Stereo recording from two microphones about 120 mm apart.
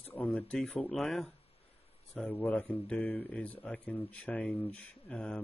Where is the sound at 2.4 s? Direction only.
10° left (ahead or behind).